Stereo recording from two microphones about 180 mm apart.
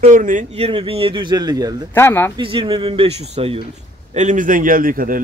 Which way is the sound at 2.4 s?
30° right (ahead or behind).